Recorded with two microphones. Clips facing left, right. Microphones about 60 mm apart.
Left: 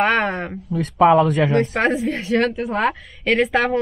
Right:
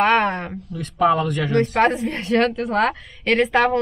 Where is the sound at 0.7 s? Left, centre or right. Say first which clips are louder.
Left 5 dB; left.